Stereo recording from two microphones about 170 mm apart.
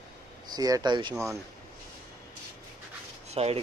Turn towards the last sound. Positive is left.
turn(degrees=-40)  # may be behind; listen again after turning